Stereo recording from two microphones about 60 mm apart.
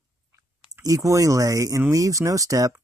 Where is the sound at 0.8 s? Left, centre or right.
Right.